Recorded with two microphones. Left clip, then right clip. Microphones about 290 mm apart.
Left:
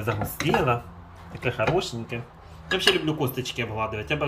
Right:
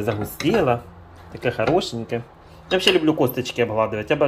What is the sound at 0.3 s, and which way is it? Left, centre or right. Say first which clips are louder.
Speech: right 4 dB; centre.